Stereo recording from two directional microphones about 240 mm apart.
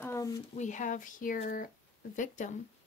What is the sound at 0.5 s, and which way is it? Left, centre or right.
Speech, left.